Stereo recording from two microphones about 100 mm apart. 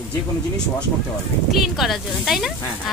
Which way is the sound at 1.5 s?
Centre (ahead or behind).